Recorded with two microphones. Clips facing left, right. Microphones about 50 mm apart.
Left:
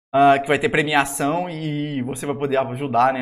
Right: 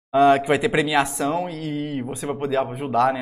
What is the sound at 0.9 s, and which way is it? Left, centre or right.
Speech, left.